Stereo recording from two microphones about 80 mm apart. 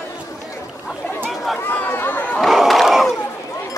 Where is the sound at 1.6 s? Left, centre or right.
Left.